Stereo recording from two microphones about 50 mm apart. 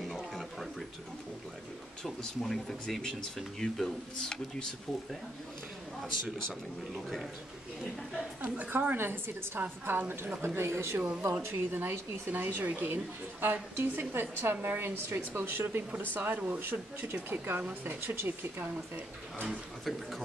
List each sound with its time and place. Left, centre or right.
0.3 s a sound: centre
2.0 s speech: centre
8.5 s speech: right
8.9 s a woman's voice: right
10.4 s speech: right
11.5 s a woman's voice: right
17.1 s a woman's voice: right
17.6 s speech: right
18.0 s a woman's voice: right
19.8 s speech: centre